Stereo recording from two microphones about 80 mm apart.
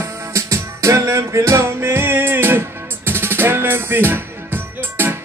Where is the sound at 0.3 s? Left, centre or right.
Right.